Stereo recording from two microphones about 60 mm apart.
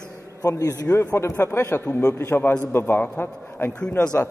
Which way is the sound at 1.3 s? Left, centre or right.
Left.